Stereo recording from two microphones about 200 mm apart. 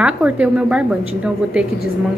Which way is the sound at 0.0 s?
5° right (ahead or behind).